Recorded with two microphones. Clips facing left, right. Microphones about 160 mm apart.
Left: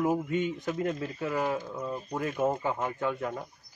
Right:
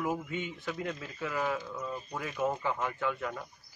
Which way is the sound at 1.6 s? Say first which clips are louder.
Left 3 dB; 25° left (ahead or behind).